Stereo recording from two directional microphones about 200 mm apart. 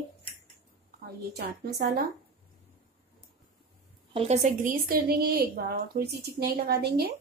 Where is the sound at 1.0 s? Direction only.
50° right (ahead or behind).